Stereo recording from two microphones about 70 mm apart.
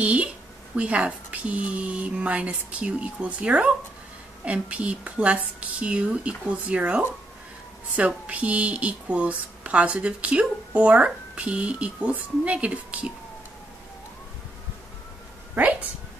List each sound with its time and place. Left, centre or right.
0.0 s a woman's voice: centre
8.3 s a woman's voice: centre
15.5 s a woman's voice: right